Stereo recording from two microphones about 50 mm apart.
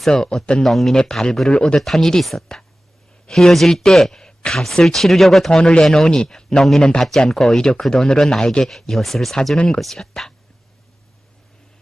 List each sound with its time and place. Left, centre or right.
0.1 s speech: centre
1.5 s speech: centre
1.8 s speech: centre
4.8 s speech: centre
5.5 s speech: centre